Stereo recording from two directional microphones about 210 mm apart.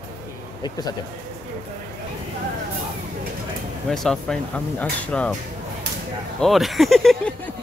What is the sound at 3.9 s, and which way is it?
Speech, centre (ahead or behind).